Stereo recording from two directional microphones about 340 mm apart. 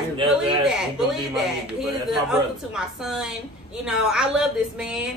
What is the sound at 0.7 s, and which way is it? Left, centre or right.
A woman's voice, centre.